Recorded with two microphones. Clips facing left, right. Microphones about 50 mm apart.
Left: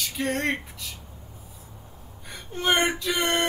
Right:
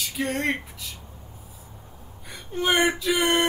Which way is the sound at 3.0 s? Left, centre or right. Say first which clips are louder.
Right 3 dB; centre.